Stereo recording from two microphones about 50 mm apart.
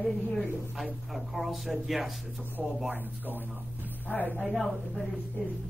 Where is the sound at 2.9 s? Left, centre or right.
Right.